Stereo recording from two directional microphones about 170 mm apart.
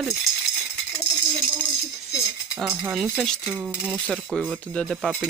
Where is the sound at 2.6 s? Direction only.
5° right (ahead or behind).